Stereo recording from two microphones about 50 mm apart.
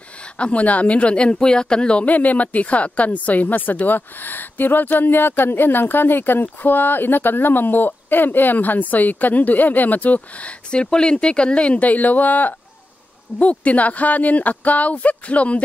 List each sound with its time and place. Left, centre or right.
0.2 s speech: left
2.0 s speech: left